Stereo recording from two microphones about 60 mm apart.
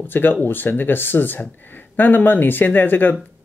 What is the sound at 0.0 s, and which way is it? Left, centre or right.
Speech, left.